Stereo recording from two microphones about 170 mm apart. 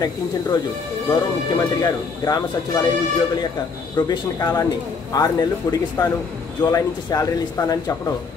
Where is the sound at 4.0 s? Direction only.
20° left (ahead or behind).